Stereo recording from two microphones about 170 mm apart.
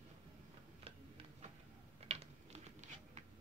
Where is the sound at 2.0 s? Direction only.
40° right (ahead or behind).